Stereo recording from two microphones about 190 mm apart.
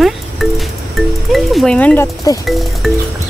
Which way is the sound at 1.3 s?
Centre (ahead or behind).